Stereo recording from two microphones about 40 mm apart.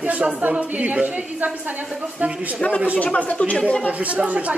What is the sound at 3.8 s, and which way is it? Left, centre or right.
Speech, right.